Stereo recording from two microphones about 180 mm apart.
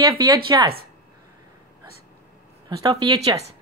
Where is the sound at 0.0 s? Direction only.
20° right (ahead or behind).